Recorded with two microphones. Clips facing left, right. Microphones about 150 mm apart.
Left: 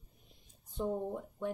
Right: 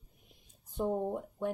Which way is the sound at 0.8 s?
30° right (ahead or behind).